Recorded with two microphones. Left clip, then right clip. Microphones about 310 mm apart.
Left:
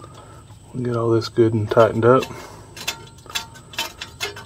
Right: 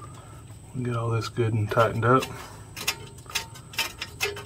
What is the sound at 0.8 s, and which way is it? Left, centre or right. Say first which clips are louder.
Speech: left 10 dB; left.